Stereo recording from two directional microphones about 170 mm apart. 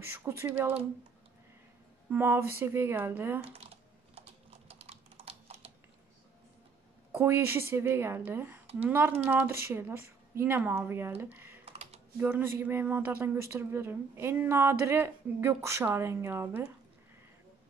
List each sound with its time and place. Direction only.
0.0 s speech: 15° right (ahead or behind)
2.0 s speech: 10° right (ahead or behind)
4.6 s typing: 35° right (ahead or behind)
7.1 s speech: 15° right (ahead or behind)
11.6 s typing: 40° right (ahead or behind)
12.2 s speech: 10° right (ahead or behind)